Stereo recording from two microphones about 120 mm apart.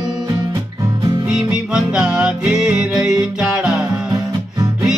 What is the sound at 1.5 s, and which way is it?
Music, 5° right (ahead or behind).